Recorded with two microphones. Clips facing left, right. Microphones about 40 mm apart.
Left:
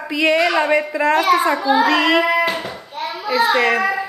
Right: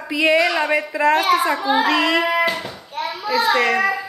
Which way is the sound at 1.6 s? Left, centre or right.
Right.